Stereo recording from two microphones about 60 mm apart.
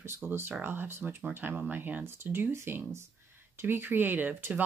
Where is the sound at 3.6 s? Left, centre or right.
Right.